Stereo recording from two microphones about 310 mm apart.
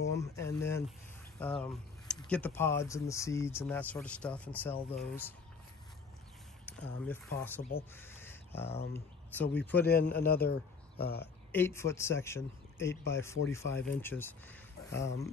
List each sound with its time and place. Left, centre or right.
0.2 s speech: centre
6.6 s speech: centre
7.9 s crow: centre
8.7 s speech: centre
9.8 s a man's voice: left
11.5 s speech: centre